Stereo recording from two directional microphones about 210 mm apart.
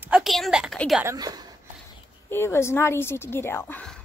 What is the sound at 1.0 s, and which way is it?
Speech, 15° right (ahead or behind).